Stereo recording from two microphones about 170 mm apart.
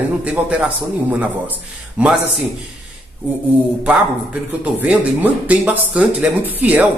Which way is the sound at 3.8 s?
10° right (ahead or behind).